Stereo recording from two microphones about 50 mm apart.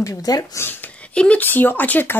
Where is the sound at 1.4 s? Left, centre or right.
Left.